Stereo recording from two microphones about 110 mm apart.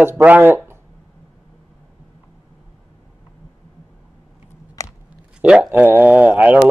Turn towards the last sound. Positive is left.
turn(degrees=-10)  # may be behind; listen again after turning